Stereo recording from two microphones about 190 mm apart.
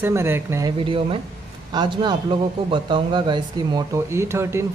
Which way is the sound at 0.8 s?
30° right (ahead or behind).